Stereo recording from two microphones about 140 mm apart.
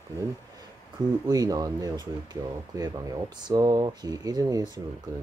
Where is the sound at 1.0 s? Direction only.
25° right (ahead or behind).